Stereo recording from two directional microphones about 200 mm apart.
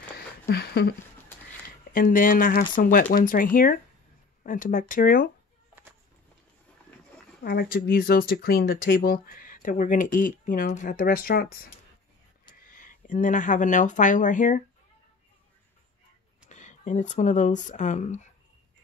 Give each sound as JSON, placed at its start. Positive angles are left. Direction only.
{"t": 0.5, "sound": "a sound", "side_deg": 55}
{"t": 1.9, "sound": "speech", "side_deg": 45}
{"t": 7.4, "sound": "speech", "side_deg": 50}
{"t": 16.4, "sound": "speech", "side_deg": 35}